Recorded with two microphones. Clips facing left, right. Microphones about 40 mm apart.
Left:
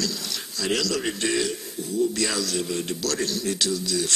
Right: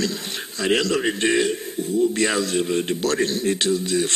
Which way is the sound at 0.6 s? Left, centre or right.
Right.